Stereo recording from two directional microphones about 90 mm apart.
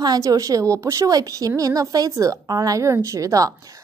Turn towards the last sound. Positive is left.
turn(degrees=-40)  # may be behind; listen again after turning